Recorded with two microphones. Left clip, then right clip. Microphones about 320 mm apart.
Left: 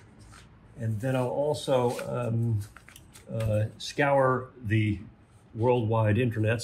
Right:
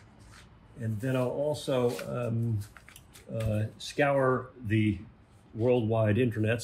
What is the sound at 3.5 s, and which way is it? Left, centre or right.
Speech, centre.